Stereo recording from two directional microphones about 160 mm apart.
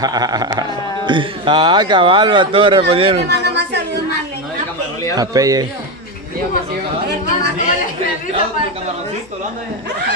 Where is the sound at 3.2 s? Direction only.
90° right.